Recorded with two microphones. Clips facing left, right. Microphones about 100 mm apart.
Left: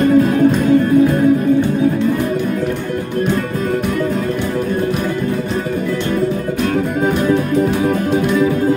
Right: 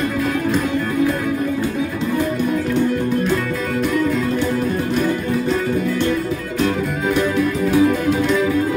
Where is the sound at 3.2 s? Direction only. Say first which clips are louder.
Left 2 dB; 50° left (ahead or behind).